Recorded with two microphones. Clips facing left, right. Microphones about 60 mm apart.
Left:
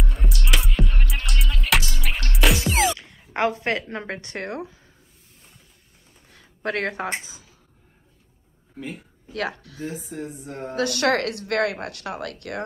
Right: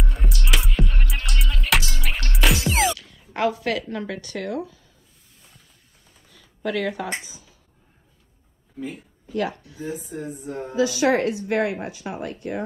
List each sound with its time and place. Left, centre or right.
0.0 s music: centre
3.0 s speech: left
6.2 s a sound: left
9.3 s speech: left